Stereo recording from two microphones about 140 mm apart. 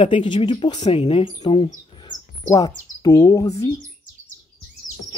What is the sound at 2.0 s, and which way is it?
Bird, 30° left (ahead or behind).